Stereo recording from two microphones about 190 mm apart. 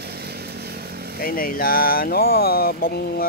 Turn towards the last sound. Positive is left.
turn(degrees=50)  # may be behind; listen again after turning